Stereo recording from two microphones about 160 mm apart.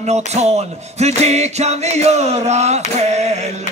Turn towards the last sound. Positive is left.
turn(degrees=-45)  # may be behind; listen again after turning